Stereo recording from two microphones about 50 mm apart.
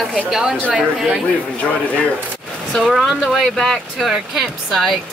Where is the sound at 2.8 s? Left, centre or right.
Centre.